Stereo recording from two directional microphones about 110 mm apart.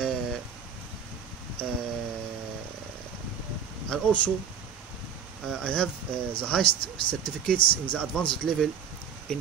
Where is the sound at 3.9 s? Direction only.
15° left (ahead or behind).